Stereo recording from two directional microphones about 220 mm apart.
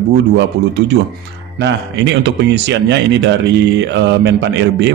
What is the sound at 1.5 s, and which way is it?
Speech, 55° right (ahead or behind).